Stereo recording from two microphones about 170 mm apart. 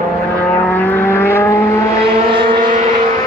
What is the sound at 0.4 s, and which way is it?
Vehicle, 10° left (ahead or behind).